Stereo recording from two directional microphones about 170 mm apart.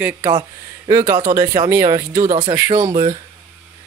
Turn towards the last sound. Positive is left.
turn(degrees=-30)  # may be behind; listen again after turning